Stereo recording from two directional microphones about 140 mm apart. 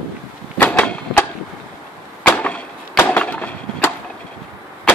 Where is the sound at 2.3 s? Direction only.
10° left (ahead or behind).